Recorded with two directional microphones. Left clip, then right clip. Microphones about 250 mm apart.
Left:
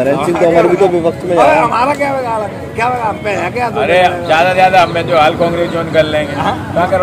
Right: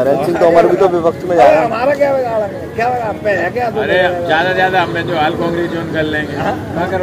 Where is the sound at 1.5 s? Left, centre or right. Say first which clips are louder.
Left 1 dB; left.